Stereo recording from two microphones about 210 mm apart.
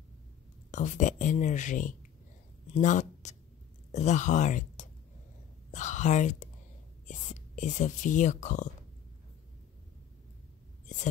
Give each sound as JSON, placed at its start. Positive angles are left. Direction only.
{"t": 0.7, "sound": "speech", "side_deg": 35}